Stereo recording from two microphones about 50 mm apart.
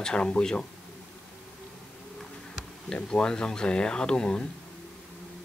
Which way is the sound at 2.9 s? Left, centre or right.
Centre.